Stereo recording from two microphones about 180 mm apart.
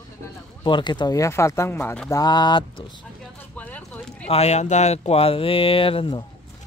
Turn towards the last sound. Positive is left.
turn(degrees=30)  # may be behind; listen again after turning